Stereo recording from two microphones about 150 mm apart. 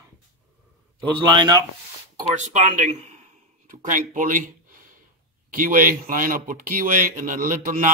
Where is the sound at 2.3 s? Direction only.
55° right (ahead or behind).